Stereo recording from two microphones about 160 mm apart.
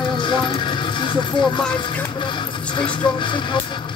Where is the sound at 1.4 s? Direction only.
5° left (ahead or behind).